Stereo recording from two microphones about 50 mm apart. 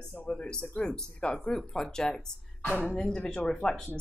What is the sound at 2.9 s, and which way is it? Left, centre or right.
Speech, centre.